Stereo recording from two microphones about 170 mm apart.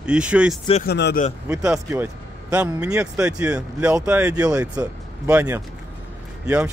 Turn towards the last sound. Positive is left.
turn(degrees=-5)  # may be behind; listen again after turning